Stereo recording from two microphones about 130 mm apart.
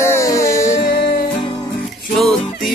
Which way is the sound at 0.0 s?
20° left (ahead or behind).